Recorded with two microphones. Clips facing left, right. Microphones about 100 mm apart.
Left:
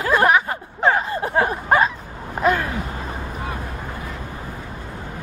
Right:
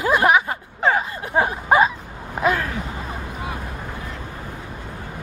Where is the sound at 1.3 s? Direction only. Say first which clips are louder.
Right 1 dB; 5° right (ahead or behind).